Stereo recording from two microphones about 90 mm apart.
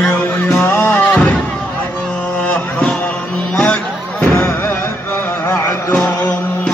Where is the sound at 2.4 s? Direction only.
15° left (ahead or behind).